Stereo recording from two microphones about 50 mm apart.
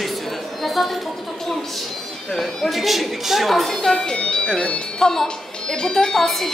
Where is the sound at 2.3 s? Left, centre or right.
Centre.